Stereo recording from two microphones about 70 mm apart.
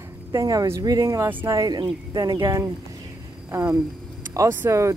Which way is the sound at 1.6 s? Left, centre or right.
Right.